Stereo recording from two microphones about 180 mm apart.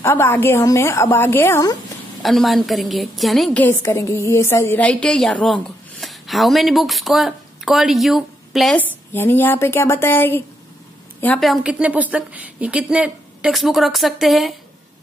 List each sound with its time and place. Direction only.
0.0 s a woman's voice: 10° left (ahead or behind)
2.2 s a woman's voice: centre (ahead or behind)
3.6 s a woman's voice: 15° left (ahead or behind); by 8.8 s centre (ahead or behind)
9.1 s a woman's voice: 10° left (ahead or behind)